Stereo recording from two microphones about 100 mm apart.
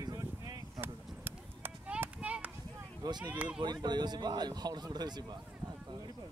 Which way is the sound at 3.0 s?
45° right (ahead or behind).